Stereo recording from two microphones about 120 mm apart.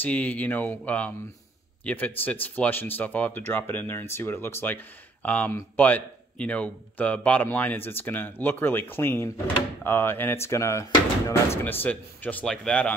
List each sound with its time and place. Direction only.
0.0 s speech: 15° left (ahead or behind)